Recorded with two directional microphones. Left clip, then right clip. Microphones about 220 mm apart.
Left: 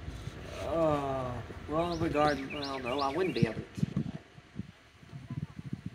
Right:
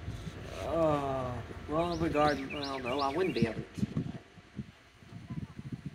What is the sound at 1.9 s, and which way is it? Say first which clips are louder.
Speech: even; 15° left (ahead or behind).